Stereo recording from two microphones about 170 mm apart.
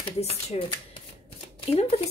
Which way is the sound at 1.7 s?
35° left (ahead or behind).